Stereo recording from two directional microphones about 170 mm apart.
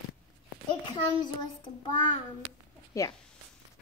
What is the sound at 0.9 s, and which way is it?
Speech, 25° left (ahead or behind).